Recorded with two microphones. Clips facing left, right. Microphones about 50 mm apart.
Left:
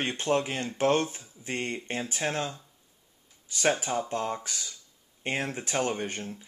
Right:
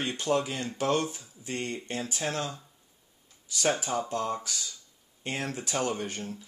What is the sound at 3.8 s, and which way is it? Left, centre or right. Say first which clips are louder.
Speech: even; left.